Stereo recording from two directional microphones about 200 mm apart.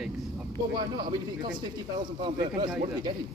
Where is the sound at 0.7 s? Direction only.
20° right (ahead or behind).